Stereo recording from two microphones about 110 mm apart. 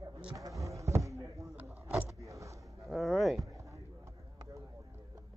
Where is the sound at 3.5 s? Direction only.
30° right (ahead or behind).